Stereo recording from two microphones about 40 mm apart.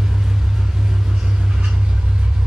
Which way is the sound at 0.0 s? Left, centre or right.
Centre.